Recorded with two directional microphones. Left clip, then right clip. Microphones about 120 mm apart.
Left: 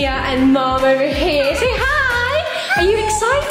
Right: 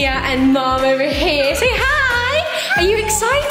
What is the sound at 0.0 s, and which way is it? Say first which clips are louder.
Speech: even; 10° right (ahead or behind).